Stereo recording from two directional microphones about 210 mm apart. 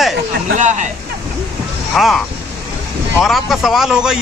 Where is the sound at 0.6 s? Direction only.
35° right (ahead or behind).